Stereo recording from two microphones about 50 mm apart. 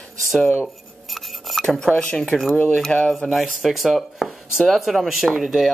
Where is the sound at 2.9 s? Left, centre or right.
Centre.